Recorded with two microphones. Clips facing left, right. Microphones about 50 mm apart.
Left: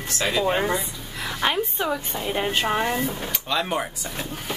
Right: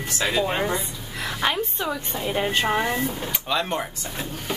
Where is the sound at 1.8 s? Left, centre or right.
Left.